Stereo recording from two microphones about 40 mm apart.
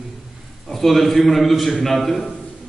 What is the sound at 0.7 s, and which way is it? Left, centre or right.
A man's voice, centre.